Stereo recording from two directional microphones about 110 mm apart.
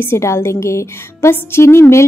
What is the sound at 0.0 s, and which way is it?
A woman's voice, 20° left (ahead or behind).